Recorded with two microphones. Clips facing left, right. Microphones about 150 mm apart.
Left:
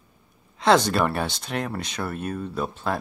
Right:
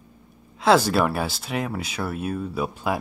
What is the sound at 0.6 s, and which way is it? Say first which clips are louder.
Speech: right 1 dB; 5° right (ahead or behind).